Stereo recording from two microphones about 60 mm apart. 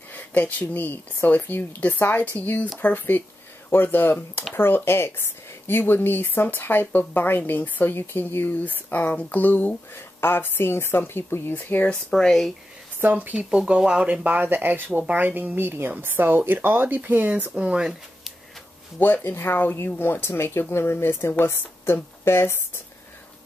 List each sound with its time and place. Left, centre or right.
0.1 s speech: left
12.1 s speech: centre
13.0 s speech: right
14.0 s speech: right
18.9 s speech: left